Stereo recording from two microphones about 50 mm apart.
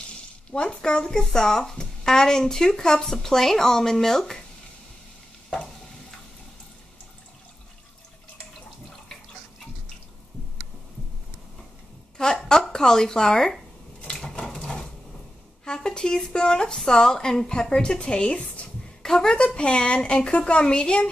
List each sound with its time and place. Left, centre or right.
0.7 s a woman's voice: centre
12.2 s a sound: centre
12.7 s a woman's voice: centre
14.0 s a sound: centre
15.6 s a woman's voice: centre
19.0 s a woman's voice: centre